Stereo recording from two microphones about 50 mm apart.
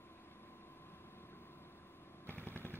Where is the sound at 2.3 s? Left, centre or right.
Left.